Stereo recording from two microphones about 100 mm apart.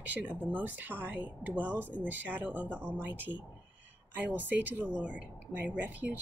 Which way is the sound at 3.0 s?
20° right (ahead or behind).